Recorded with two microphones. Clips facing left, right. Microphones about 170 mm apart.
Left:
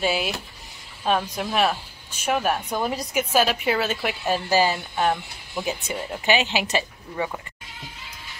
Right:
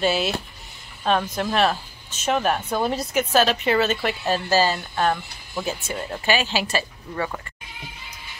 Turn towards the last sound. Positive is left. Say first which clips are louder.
# even
turn(degrees=15)  # may be behind; listen again after turning